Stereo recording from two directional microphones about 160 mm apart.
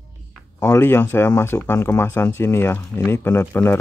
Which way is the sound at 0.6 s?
15° left (ahead or behind).